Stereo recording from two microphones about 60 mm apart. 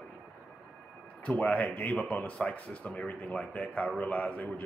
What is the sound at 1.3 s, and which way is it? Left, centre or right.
Speech, left.